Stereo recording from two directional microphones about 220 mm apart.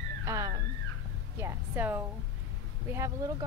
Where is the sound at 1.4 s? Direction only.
10° right (ahead or behind).